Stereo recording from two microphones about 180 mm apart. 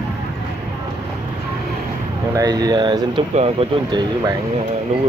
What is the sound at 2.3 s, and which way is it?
Speech, 20° right (ahead or behind).